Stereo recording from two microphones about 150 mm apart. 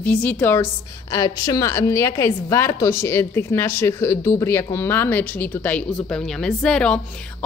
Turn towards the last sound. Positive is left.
turn(degrees=5)  # may be behind; listen again after turning